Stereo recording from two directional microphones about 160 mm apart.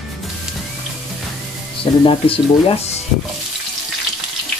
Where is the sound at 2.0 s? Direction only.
35° left (ahead or behind).